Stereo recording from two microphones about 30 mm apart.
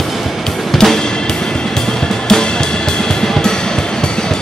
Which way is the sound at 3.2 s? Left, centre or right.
Centre.